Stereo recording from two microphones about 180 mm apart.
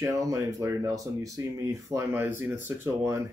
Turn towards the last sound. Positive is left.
turn(degrees=-15)  # may be behind; listen again after turning